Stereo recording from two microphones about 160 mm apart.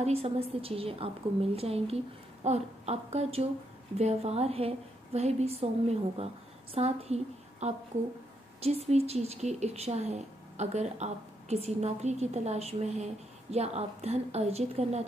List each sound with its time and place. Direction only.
0.0 s a woman's voice: 40° right (ahead or behind)